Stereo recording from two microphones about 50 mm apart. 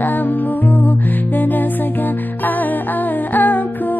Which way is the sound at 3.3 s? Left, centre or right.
Left.